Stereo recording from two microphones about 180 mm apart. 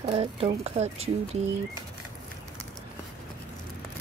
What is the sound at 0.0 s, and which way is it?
Speech, 30° right (ahead or behind).